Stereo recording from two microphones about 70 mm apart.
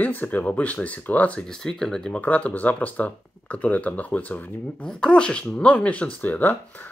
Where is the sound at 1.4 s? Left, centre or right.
Centre.